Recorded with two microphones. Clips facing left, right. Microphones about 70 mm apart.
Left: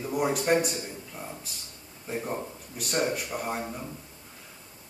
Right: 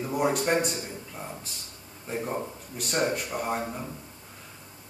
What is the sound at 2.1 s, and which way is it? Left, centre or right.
A man's voice, centre.